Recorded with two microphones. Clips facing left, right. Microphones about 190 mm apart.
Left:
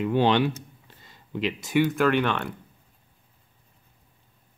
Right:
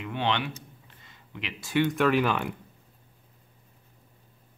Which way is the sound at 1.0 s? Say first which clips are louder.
Left 12 dB; 35° left (ahead or behind).